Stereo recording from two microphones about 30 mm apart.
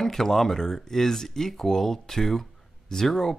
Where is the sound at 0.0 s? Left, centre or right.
Centre.